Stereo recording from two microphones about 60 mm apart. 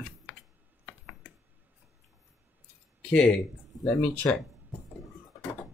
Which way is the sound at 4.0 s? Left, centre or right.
Left.